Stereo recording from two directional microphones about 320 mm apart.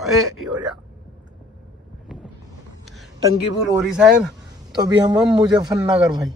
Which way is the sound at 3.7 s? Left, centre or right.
Centre.